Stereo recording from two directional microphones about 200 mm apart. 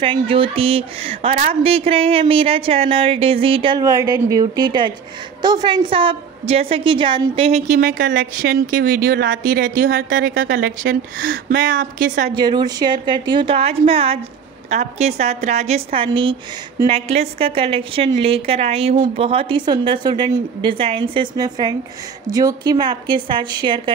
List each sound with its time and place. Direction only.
0.0 s a woman's voice: 25° right (ahead or behind); by 12.3 s 40° right (ahead or behind)
12.4 s a woman's voice: 20° right (ahead or behind)